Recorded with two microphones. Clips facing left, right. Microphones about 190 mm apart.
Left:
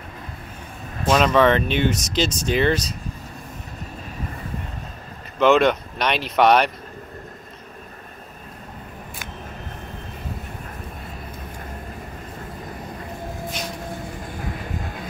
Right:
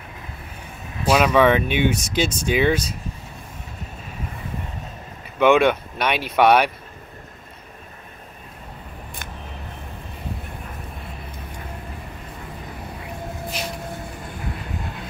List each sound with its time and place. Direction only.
1.0 s speech: 10° right (ahead or behind)
1.7 s speech: 60° right (ahead or behind)
2.5 s speech: 5° right (ahead or behind)
5.4 s speech: 10° right (ahead or behind)